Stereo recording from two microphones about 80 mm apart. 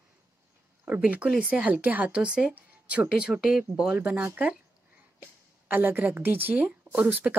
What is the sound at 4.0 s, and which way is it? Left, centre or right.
Speech, centre.